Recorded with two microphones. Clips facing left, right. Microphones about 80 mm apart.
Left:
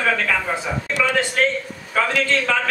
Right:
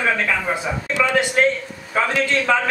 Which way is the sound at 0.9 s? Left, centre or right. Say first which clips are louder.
Right 2 dB; centre.